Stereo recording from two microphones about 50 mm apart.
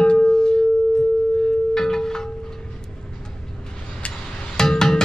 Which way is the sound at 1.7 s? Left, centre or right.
Centre.